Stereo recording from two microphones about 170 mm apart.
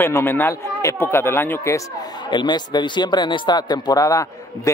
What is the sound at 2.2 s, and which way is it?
Speech, 25° left (ahead or behind).